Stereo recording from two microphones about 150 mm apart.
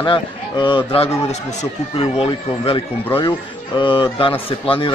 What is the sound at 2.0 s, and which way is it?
A man's voice, 35° left (ahead or behind).